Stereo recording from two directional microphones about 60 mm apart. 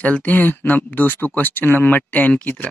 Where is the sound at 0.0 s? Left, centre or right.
Left.